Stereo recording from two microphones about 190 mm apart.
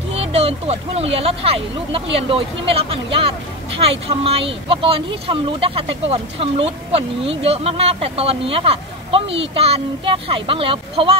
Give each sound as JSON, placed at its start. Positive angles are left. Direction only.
{"t": 0.1, "sound": "speech", "side_deg": -35}